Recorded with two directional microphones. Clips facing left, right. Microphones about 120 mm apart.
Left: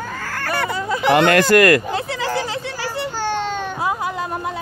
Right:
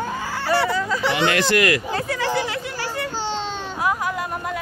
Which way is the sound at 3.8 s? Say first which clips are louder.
Right 2 dB; 25° left (ahead or behind).